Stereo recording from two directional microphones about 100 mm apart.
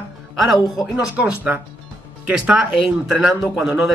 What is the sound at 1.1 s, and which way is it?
A man's voice, 15° right (ahead or behind).